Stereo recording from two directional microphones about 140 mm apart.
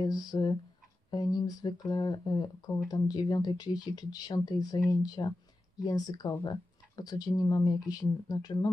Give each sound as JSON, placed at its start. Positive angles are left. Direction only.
{"t": 0.0, "sound": "speech", "side_deg": 30}